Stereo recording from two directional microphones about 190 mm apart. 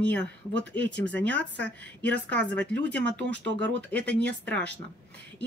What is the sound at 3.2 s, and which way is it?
Speech, 70° right (ahead or behind).